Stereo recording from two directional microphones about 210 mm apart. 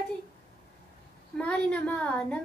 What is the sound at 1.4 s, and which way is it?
A woman's voice, 5° left (ahead or behind).